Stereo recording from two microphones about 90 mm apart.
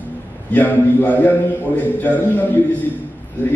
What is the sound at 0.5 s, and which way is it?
A man's voice, 20° left (ahead or behind).